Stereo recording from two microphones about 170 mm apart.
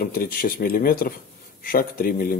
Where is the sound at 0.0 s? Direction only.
60° left (ahead or behind).